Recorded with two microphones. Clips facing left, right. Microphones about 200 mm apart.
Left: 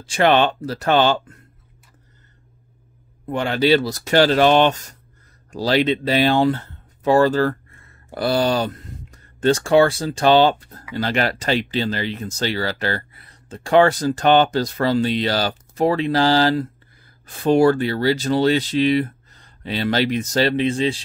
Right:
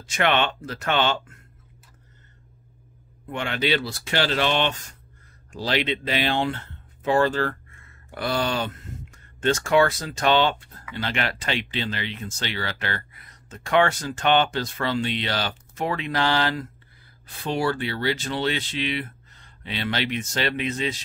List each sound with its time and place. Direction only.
0.0 s speech: 35° left (ahead or behind)
3.3 s speech: 35° left (ahead or behind)
17.4 s speech: 45° left (ahead or behind); by 21.0 s 30° left (ahead or behind)